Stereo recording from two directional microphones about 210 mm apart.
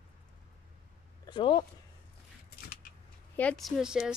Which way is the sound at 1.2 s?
25° left (ahead or behind).